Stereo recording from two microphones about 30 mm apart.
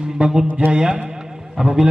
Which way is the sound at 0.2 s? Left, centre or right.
Right.